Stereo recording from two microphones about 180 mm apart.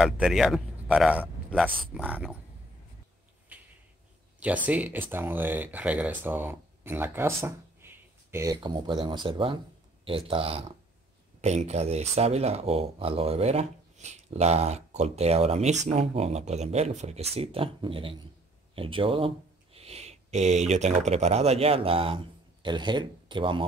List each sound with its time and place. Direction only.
0.0 s speech: centre (ahead or behind)
4.4 s speech: 10° right (ahead or behind); by 23.6 s 25° right (ahead or behind)